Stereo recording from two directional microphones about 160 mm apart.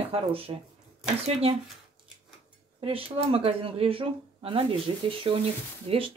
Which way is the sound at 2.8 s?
35° right (ahead or behind).